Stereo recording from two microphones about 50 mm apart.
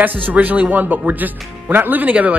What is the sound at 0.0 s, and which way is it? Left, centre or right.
A man's voice, right.